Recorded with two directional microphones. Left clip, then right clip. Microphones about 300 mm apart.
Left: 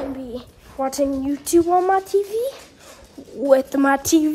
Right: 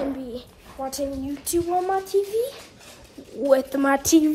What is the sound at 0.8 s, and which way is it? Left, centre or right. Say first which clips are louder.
Speech: left 7 dB; left.